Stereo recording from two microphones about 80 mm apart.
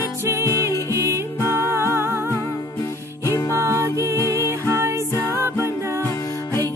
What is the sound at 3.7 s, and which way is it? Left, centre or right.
Music, right.